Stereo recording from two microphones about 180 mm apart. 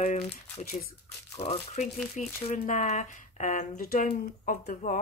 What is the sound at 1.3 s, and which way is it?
Speech, 40° left (ahead or behind).